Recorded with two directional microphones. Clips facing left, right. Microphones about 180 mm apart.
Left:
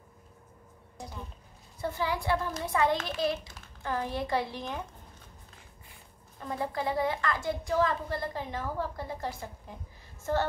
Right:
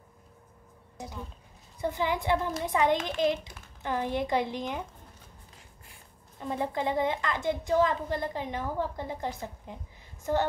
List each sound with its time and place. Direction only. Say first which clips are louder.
0.9 s a sound: right 2 dB; 20° right (ahead or behind)
1.8 s a woman's voice: right 2 dB; 15° right (ahead or behind)
6.4 s a woman's voice: right 2 dB; 20° right (ahead or behind)